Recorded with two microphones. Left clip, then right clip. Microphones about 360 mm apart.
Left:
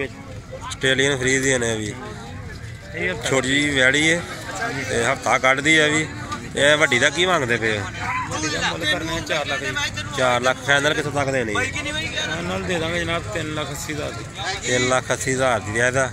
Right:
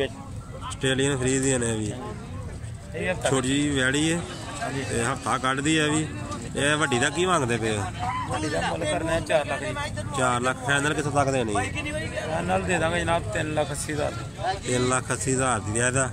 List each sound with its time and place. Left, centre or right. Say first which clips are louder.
0.8 s speech: left 6 dB; centre
3.3 s speech: left 6 dB; centre
8.0 s speech: left 4 dB; right
10.1 s speech: left 5 dB; centre
11.5 s vehicle: left 4 dB; right
12.7 s speech: left 3 dB; right
14.7 s speech: left 8 dB; centre